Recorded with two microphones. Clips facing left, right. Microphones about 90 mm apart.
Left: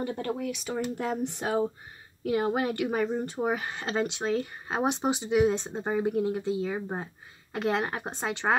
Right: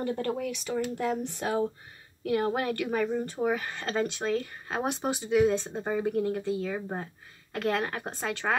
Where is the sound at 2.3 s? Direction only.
15° left (ahead or behind).